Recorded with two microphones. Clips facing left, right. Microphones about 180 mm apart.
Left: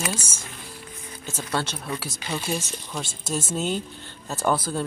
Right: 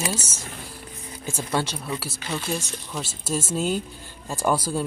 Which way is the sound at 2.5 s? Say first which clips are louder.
Even; centre (ahead or behind).